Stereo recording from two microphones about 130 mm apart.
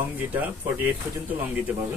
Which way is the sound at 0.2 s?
15° right (ahead or behind).